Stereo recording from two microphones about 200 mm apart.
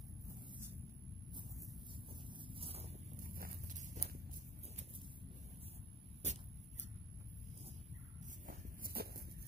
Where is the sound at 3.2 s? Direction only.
45° right (ahead or behind).